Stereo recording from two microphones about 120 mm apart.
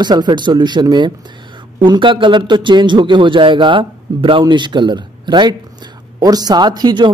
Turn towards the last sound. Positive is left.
turn(degrees=-40)  # may be behind; listen again after turning